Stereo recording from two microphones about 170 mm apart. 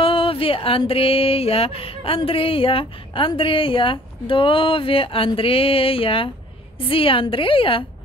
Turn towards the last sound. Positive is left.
turn(degrees=30)  # may be behind; listen again after turning